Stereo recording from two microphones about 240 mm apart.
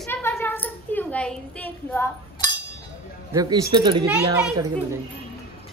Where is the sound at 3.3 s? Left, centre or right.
Centre.